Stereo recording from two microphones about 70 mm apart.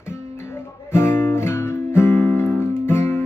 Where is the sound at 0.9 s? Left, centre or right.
Left.